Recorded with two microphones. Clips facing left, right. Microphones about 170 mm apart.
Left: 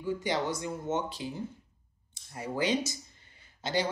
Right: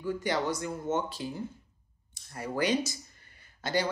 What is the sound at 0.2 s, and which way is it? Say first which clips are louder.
Speech: right 1 dB; 20° left (ahead or behind).